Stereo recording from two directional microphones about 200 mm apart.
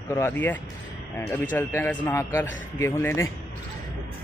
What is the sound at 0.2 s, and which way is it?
Speech, 10° left (ahead or behind).